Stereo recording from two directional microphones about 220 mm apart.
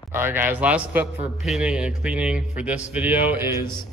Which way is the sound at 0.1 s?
10° right (ahead or behind).